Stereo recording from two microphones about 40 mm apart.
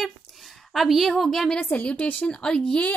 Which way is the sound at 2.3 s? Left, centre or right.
Left.